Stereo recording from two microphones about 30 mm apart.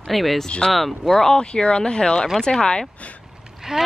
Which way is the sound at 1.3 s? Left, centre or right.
Left.